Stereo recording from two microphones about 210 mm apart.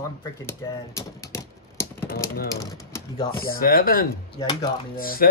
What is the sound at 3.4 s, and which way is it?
Speech, 45° left (ahead or behind).